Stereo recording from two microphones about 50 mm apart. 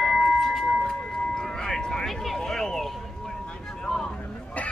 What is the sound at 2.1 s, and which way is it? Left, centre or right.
Vehicle, centre.